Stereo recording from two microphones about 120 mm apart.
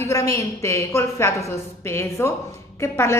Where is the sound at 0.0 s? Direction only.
25° left (ahead or behind).